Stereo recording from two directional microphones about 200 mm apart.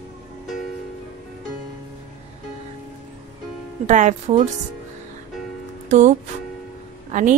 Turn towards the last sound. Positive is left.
turn(degrees=-40)  # may be behind; listen again after turning